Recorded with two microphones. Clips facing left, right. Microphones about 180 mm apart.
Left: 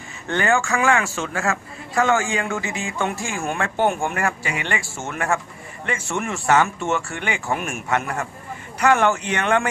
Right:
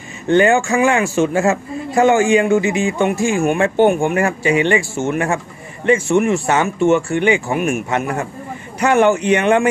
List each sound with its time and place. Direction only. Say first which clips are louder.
0.3 s a man's voice: right 8 dB; 20° right (ahead or behind)